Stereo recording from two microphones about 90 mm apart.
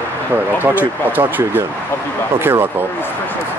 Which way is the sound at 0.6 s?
20° right (ahead or behind).